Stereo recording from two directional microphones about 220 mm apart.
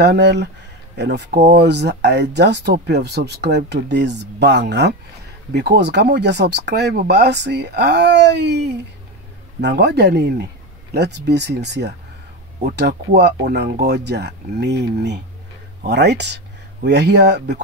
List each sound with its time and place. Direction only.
0.0 s speech: 50° right (ahead or behind)